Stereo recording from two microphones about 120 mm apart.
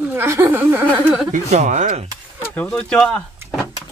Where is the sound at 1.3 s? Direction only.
75° right (ahead or behind).